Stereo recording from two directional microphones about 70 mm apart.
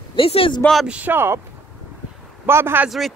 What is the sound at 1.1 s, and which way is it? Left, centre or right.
Speech, right.